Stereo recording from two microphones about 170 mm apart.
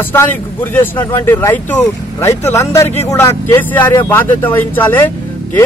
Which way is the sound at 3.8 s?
25° left (ahead or behind).